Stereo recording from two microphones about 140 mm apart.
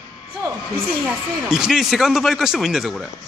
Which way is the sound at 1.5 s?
5° right (ahead or behind).